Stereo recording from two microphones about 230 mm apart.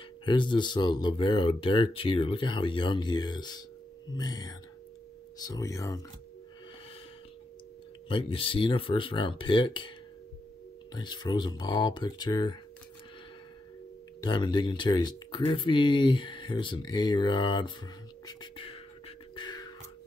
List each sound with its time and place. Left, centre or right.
0.2 s speech: centre
8.1 s speech: left
11.0 s speech: centre
14.2 s speech: centre
18.2 s beatboxing: left